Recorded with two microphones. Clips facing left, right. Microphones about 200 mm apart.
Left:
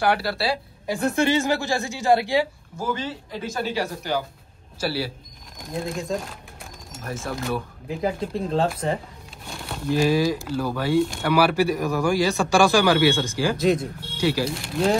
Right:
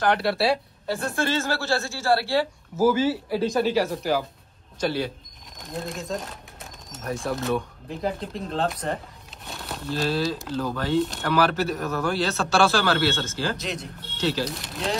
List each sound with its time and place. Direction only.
0.0 s speech: 5° left (ahead or behind)
0.8 s speech: 15° left (ahead or behind)
2.7 s speech: 5° right (ahead or behind)
9.5 s a sound: centre (ahead or behind)
9.8 s speech: 15° left (ahead or behind)
13.6 s speech: 50° left (ahead or behind)
14.1 s speech: 10° left (ahead or behind)